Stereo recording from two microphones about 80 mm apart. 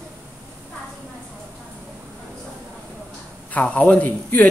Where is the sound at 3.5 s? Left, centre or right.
Centre.